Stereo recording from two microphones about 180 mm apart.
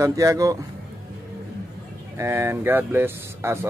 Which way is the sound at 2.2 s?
15° right (ahead or behind).